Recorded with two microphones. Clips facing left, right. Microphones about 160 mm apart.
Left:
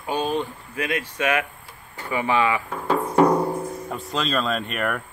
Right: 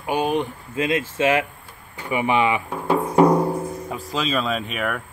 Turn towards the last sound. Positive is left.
turn(degrees=0)  # may be behind; listen again after turning